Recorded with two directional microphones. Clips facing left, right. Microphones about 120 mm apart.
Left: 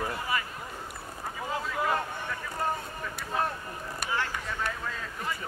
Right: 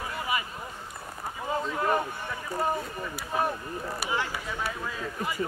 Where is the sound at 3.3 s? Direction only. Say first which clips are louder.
Right 3 dB; 5° right (ahead or behind).